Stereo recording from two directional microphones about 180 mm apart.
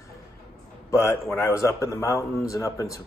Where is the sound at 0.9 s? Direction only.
15° left (ahead or behind).